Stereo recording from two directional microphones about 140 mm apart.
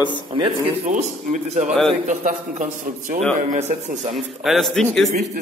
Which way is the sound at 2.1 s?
65° right (ahead or behind).